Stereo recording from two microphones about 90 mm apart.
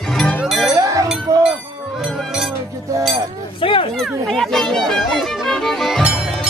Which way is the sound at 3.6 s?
80° left.